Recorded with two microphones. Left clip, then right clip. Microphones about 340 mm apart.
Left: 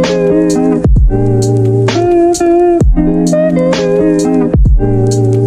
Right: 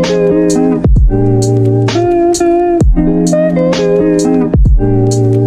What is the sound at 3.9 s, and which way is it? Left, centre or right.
Music, centre.